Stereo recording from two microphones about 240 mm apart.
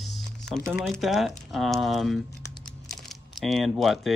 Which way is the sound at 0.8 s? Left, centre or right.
Centre.